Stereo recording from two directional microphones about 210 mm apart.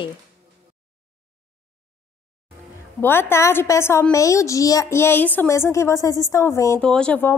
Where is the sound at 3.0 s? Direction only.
10° left (ahead or behind).